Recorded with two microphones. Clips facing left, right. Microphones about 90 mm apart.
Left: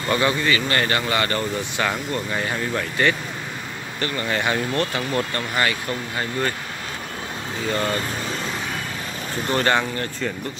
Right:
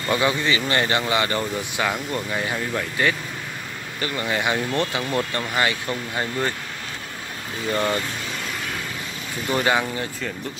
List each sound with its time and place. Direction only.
0.1 s speech: 15° right (ahead or behind)
7.7 s speech: 20° right (ahead or behind)
9.5 s speech: 10° right (ahead or behind)